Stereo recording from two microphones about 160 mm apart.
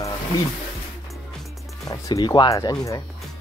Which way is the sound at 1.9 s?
25° left (ahead or behind).